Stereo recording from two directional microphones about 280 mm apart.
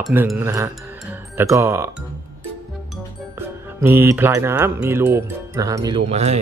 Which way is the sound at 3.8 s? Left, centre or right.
Centre.